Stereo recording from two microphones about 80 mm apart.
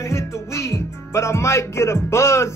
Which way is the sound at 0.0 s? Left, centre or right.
Left.